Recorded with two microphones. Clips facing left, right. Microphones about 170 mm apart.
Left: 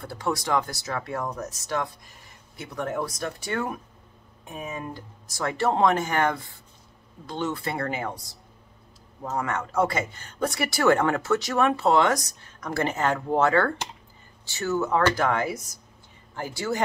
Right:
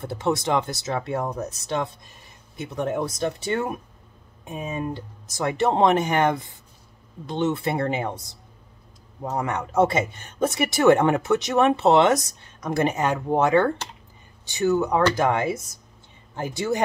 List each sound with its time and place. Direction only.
0.0 s speech: 25° right (ahead or behind)